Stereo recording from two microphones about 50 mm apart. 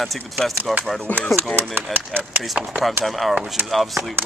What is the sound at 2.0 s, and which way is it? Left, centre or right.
Speech, right.